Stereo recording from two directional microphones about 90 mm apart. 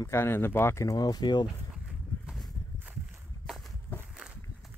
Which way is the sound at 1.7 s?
5° right (ahead or behind).